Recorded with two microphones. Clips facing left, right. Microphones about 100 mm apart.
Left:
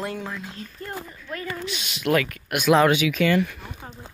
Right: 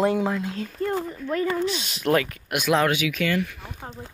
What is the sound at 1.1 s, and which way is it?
Speech, 45° right (ahead or behind).